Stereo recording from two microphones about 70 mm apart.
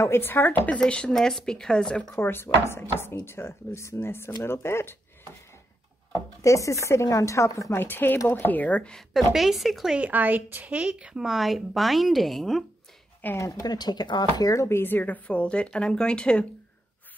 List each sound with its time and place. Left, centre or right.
0.0 s speech: left
0.7 s speech: centre
1.1 s speech: centre
2.1 s speech: left
6.4 s speech: left
7.7 s speech: left
8.9 s a woman's voice: centre
9.9 s a woman's voice: right; by 12.6 s centre
13.4 s speech: left
14.5 s speech: left; by 16.4 s centre